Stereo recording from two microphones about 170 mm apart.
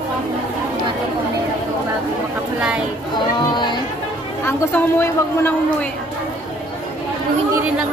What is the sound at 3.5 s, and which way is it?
Music, 25° left (ahead or behind).